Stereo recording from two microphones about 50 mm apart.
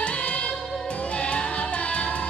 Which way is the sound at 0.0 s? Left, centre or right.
Left.